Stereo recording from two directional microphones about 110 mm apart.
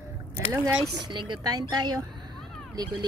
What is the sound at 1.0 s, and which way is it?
Speech, 40° right (ahead or behind).